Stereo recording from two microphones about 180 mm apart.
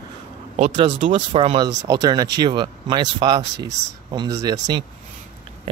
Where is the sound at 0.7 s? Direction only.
25° right (ahead or behind).